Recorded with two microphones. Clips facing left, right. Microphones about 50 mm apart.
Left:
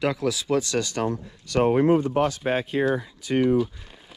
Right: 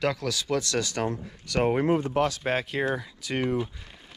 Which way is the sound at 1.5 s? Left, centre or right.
Right.